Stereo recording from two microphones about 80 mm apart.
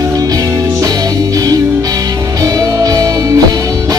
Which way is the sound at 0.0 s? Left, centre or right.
Right.